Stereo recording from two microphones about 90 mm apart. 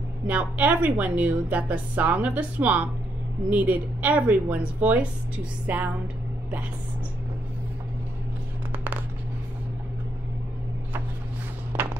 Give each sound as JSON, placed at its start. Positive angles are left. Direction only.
{"t": 0.3, "sound": "a woman's voice", "side_deg": -15}